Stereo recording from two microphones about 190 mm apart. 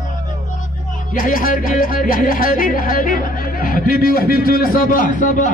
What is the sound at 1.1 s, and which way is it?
Speech, 45° left (ahead or behind).